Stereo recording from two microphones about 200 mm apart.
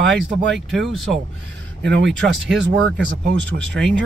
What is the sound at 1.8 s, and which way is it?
Speech, 65° right (ahead or behind).